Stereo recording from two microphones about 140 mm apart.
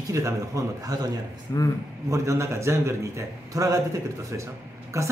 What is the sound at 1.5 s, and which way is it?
Speech, 25° left (ahead or behind).